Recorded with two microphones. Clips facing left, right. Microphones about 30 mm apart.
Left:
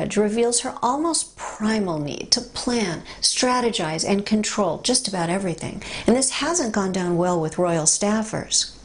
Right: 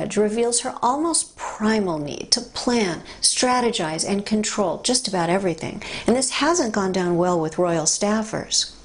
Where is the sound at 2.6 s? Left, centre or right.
Centre.